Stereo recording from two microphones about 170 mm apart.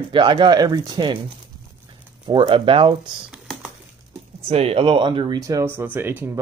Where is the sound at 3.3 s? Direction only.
5° right (ahead or behind).